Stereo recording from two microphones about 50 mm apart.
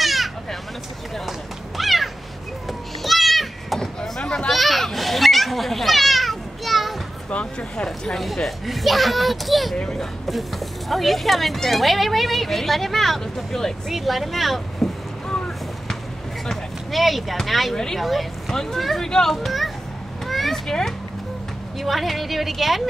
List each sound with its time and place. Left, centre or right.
0.0 s a sound: centre
1.8 s cat: centre
3.0 s children playing: centre
4.5 s a sound: centre
7.2 s speech: left
7.8 s speech: centre
8.2 s speech: centre
15.2 s a sound: centre
16.4 s speech: centre
17.7 s speech: centre
20.2 s a sound: centre
21.7 s speech: centre